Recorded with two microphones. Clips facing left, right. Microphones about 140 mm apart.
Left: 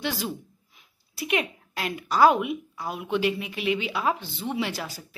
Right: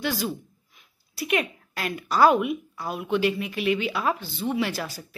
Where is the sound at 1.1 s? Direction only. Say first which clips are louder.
Right 1 dB; 20° left (ahead or behind).